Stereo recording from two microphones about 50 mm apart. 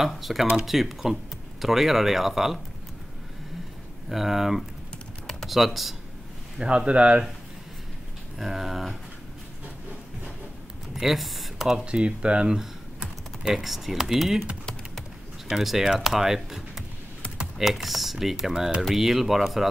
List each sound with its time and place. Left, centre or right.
0.0 s speech: centre
4.1 s speech: centre
6.6 s speech: centre
8.4 s speech: centre
11.0 s speech: centre
11.8 s speech: right
13.6 s speech: centre
15.4 s speech: centre